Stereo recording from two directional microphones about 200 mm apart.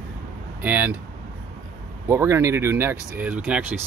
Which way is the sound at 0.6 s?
10° right (ahead or behind).